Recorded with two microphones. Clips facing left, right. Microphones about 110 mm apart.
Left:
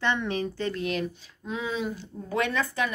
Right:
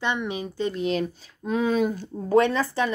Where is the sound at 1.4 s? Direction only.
50° right (ahead or behind); by 2.9 s 30° right (ahead or behind).